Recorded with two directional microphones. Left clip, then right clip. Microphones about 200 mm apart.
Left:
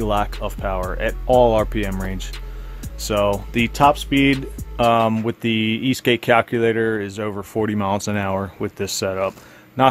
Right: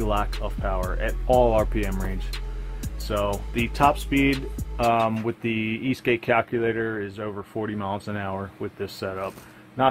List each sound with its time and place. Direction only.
0.4 s speech: 25° left (ahead or behind)
3.1 s speech: 35° left (ahead or behind)
4.3 s speech: centre (ahead or behind)
4.7 s speech: 40° left (ahead or behind)